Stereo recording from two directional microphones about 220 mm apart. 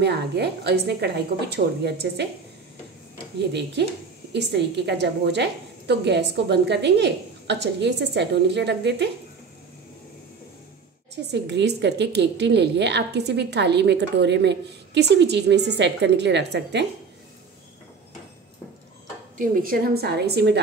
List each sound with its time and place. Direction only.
0.0 s a woman's voice: 50° right (ahead or behind)
3.3 s a woman's voice: 50° right (ahead or behind)
11.3 s a woman's voice: 50° right (ahead or behind)
19.3 s a woman's voice: 40° right (ahead or behind)